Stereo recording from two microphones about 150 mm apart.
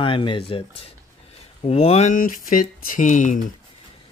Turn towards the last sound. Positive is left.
turn(degrees=60)  # may be behind; listen again after turning